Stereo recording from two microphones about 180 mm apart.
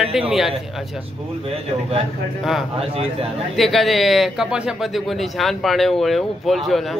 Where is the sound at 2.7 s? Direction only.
35° right (ahead or behind).